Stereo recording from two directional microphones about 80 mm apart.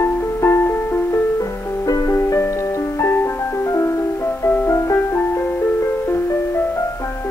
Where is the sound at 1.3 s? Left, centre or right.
Left.